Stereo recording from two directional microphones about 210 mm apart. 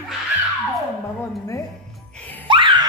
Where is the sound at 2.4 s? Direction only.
25° right (ahead or behind).